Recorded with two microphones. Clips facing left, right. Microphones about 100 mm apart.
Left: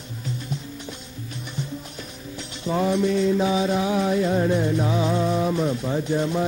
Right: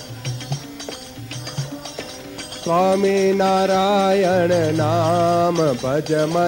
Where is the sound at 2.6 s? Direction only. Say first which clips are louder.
Right 6 dB; 85° right.